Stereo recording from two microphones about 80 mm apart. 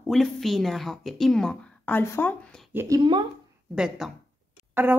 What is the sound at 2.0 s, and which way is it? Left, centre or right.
Speech, left.